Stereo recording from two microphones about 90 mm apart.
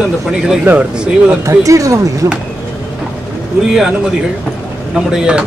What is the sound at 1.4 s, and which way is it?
Speech, 35° right (ahead or behind).